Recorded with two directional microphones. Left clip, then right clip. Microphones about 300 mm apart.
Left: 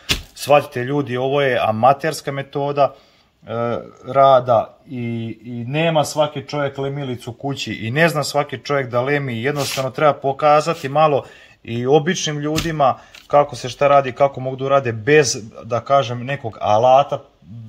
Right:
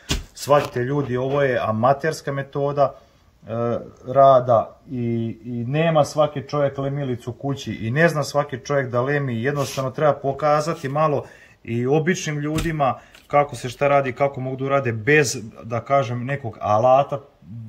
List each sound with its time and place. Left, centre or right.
0.5 s speech: centre
5.8 s speech: centre